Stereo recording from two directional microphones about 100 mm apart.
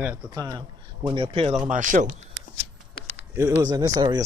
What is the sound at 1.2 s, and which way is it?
Speech, 75° right (ahead or behind).